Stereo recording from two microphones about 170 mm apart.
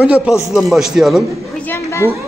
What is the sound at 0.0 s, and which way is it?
Speech, 5° right (ahead or behind).